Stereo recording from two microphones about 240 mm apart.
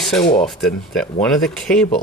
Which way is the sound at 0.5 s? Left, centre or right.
Centre.